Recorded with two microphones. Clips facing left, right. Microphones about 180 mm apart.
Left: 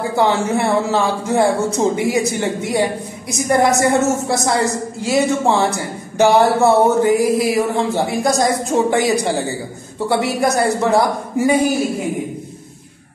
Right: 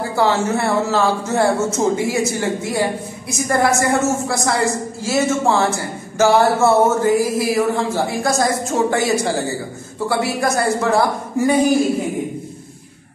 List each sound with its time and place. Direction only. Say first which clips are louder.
0.1 s a woman's voice: even; 15° left (ahead or behind)